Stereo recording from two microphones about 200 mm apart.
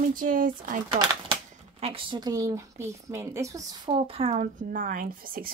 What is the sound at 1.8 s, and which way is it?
Speech, 25° right (ahead or behind).